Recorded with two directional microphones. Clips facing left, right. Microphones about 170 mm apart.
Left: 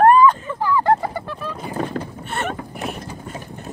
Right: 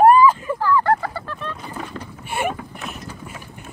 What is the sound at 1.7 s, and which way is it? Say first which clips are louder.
Boat: left 7 dB; 50° left (ahead or behind).